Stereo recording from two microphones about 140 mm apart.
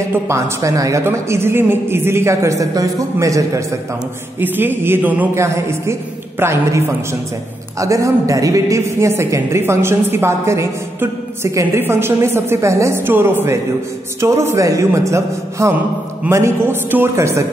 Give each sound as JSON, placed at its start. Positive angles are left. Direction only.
{"t": 0.3, "sound": "a man's voice", "side_deg": -20}
{"t": 7.8, "sound": "a man's voice", "side_deg": -25}